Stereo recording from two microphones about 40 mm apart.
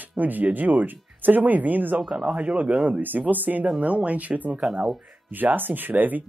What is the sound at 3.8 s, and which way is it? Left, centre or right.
Speech, right.